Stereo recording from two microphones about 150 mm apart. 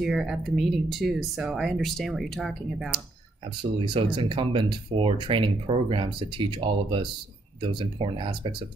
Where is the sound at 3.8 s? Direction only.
30° right (ahead or behind).